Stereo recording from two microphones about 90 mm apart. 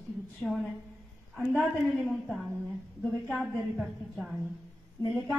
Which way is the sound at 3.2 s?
Centre (ahead or behind).